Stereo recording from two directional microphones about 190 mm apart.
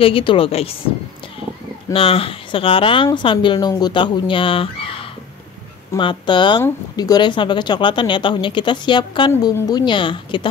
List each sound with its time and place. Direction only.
0.0 s speech: 30° left (ahead or behind)
1.9 s speech: 30° left (ahead or behind)